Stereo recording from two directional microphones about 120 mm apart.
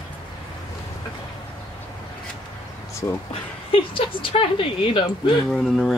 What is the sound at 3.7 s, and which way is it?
Speech, 45° left (ahead or behind).